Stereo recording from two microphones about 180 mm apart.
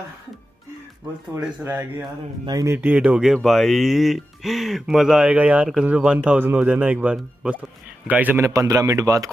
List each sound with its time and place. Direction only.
1.4 s a man's voice: 10° right (ahead or behind)
2.4 s a man's voice: 20° right (ahead or behind)